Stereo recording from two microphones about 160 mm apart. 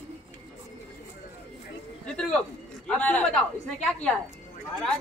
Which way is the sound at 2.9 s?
10° left (ahead or behind).